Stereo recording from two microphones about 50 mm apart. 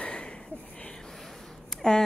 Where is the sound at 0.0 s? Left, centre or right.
Left.